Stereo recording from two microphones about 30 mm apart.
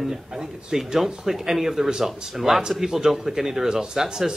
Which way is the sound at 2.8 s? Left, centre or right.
Centre.